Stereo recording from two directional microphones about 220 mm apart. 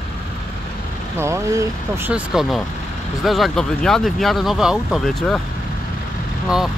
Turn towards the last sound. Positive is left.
turn(degrees=0)  # may be behind; listen again after turning